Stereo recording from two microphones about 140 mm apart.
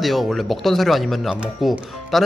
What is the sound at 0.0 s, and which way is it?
Speech, centre (ahead or behind).